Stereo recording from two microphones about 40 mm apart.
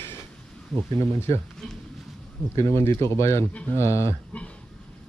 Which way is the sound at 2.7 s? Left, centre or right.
Left.